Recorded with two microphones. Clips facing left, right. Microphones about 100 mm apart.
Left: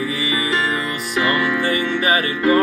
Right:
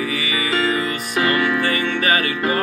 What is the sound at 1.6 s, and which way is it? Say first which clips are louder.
Music: left 1 dB; 20° left (ahead or behind).